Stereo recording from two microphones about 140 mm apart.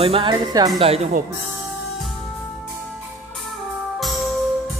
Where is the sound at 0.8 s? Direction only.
45° right (ahead or behind).